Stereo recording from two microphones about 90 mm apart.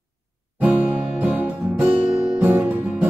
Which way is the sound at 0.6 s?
15° right (ahead or behind).